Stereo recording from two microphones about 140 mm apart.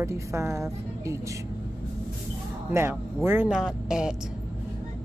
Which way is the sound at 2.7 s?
15° right (ahead or behind).